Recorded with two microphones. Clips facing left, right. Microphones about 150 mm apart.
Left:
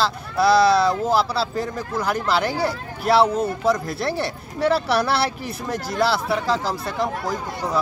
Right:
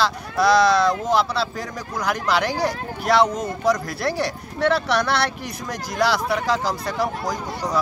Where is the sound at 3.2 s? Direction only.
30° left (ahead or behind).